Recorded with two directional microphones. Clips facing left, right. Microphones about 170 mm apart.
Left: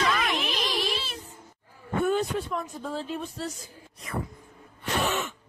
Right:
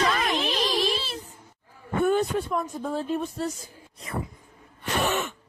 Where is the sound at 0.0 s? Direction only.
35° right (ahead or behind).